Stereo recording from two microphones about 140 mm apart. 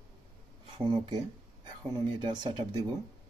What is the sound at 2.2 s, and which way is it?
Speech, 35° right (ahead or behind).